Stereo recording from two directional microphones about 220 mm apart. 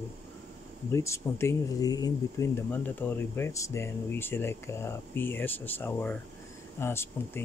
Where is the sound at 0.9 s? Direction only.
10° left (ahead or behind).